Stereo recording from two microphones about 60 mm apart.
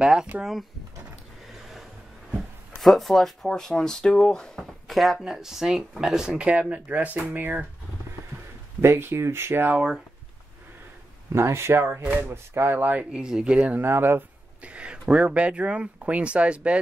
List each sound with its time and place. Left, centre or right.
0.0 s speech: centre
1.5 s a sound: centre
2.7 s speech: centre; by 7.5 s right
8.8 s speech: right
11.3 s speech: right
13.1 s speech: centre
13.7 s speech: right
14.6 s speech: centre